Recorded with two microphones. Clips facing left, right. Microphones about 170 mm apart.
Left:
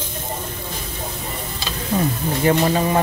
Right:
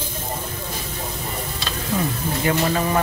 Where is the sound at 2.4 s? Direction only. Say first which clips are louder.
Left 4 dB; 25° left (ahead or behind).